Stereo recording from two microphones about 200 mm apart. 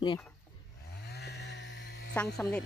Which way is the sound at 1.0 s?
55° left (ahead or behind).